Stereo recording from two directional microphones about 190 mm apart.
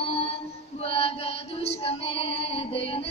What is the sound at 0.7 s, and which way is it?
Female singing, 30° left (ahead or behind).